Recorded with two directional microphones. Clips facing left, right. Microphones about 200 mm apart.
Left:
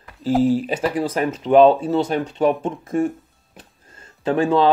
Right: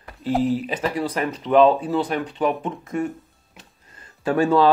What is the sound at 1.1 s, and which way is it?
Speech, 30° left (ahead or behind).